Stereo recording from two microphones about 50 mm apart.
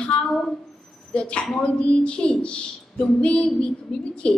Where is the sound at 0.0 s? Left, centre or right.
Centre.